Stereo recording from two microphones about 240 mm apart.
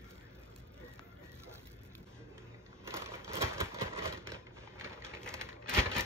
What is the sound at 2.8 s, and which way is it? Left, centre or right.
Typewriter, centre.